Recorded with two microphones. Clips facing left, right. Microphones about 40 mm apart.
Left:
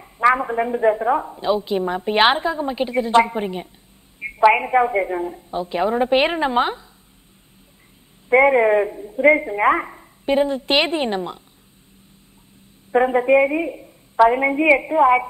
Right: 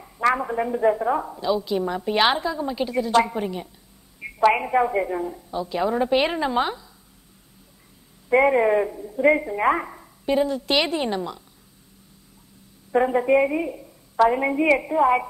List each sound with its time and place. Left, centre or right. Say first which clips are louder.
0.0 s a woman's voice: left 5 dB; left
8.3 s a woman's voice: left 4 dB; left
12.9 s a woman's voice: left 3 dB; left